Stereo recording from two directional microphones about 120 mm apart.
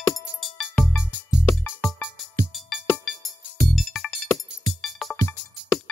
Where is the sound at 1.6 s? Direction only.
15° left (ahead or behind).